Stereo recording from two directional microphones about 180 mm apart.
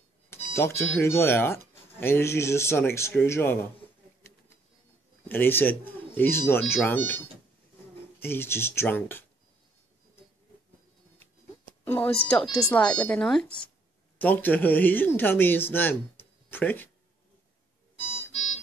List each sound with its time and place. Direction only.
0.3 s speech: 15° left (ahead or behind)
5.3 s speech: 10° left (ahead or behind)
8.2 s speech: 10° left (ahead or behind)
11.8 s a sound: 10° left (ahead or behind)
12.3 s speech: 5° left (ahead or behind)